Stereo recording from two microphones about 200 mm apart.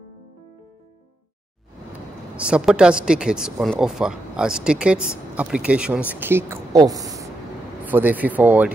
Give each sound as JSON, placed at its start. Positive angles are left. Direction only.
{"t": 2.3, "sound": "a woman's voice", "side_deg": -5}